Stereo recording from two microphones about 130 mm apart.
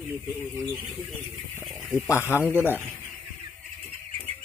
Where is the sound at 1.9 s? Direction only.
15° left (ahead or behind).